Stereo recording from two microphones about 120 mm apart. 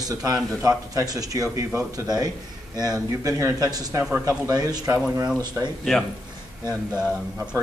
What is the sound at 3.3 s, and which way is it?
A man's voice, 25° right (ahead or behind).